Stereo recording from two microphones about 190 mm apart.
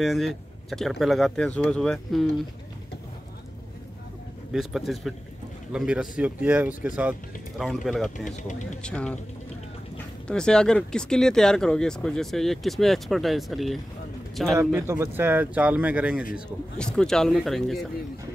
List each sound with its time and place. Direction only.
0.0 s speech: centre (ahead or behind)
4.5 s speech: centre (ahead or behind)
8.4 s speech: 40° left (ahead or behind)
8.8 s speech: 5° left (ahead or behind)
10.2 s speech: 5° left (ahead or behind)
14.7 s speech: 10° right (ahead or behind)
16.7 s speech: 5° left (ahead or behind)